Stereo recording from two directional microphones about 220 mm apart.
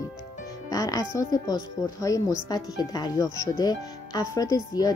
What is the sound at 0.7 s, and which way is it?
Speech, 15° left (ahead or behind).